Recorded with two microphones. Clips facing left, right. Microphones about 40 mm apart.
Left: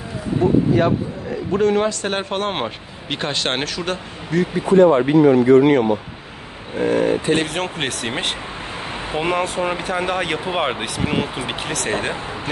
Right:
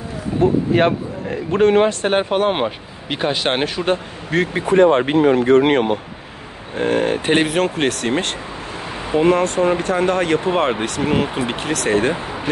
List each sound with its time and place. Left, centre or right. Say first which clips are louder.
0.4 s speech: right 1 dB; right
2.0 s speech: right 5 dB; centre
2.4 s speech: right 5 dB; centre
3.6 s speech: right 5 dB; right
4.3 s speech: even; right
7.4 s speech: right 6 dB; centre